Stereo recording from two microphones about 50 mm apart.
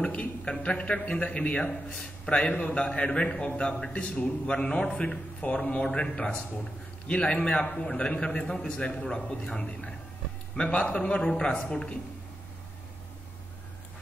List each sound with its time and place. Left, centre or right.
0.0 s a sound: left
1.2 s a man's voice: left
11.2 s a man's voice: centre